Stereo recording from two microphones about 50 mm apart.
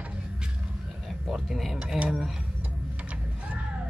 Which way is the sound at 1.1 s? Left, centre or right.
Centre.